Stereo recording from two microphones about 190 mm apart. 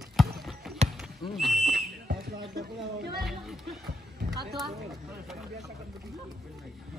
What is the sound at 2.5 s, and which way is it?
Speech, 55° right (ahead or behind).